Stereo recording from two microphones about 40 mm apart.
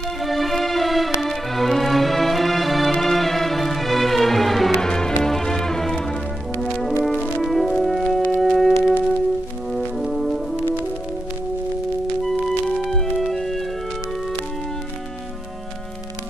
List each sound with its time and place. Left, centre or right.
0.2 s music: centre
4.8 s music: centre
7.0 s music: left
7.4 s music: centre
9.7 s brass instrument: centre
13.2 s music: centre